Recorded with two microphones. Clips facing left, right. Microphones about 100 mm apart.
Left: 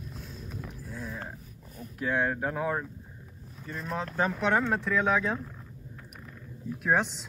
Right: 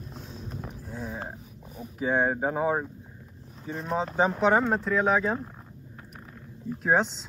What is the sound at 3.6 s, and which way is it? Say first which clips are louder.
Speech: right 4 dB; centre (ahead or behind).